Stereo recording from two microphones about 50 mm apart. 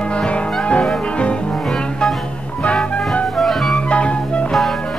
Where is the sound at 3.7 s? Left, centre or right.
Left.